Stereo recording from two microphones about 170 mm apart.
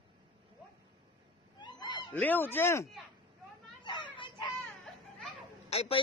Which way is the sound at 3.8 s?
30° left (ahead or behind).